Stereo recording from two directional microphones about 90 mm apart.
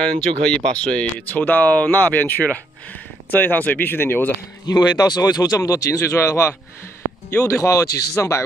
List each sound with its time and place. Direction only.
0.0 s speech: 10° left (ahead or behind)
4.6 s speech: 45° left (ahead or behind)
7.4 s speech: 35° left (ahead or behind)